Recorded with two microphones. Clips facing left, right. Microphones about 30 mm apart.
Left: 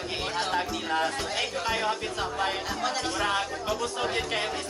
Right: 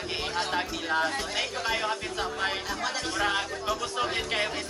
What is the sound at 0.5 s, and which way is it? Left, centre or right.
Music, centre.